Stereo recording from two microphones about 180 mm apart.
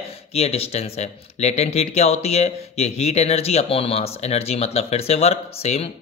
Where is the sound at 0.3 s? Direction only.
35° left (ahead or behind).